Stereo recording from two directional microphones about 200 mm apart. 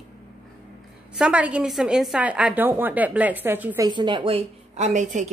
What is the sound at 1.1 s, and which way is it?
A woman's voice, 5° right (ahead or behind).